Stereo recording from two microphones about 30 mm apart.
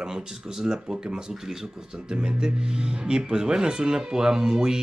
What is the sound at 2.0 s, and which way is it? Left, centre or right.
Speech, right.